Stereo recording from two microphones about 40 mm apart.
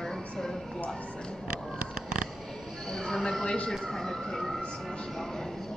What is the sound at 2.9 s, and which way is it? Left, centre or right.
Speech, centre.